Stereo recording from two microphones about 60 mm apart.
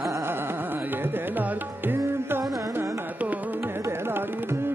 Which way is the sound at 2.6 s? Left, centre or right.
Right.